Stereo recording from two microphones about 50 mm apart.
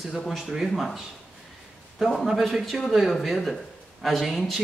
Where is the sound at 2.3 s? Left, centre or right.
Centre.